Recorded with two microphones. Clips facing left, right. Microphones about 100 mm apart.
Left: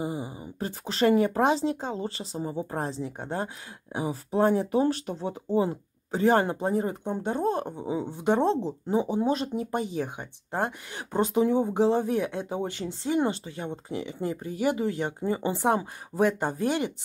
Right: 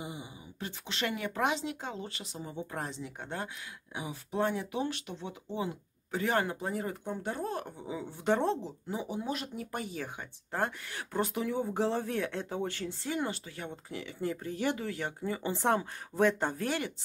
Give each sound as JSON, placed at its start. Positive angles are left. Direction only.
{"t": 0.0, "sound": "speech", "side_deg": 40}